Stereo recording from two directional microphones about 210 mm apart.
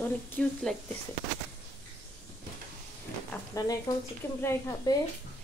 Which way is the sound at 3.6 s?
15° left (ahead or behind).